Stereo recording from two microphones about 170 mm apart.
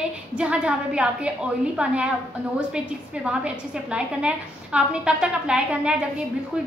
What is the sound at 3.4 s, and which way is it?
A woman's voice, 5° right (ahead or behind).